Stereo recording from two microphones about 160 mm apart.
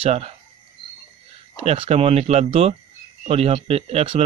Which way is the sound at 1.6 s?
40° right (ahead or behind).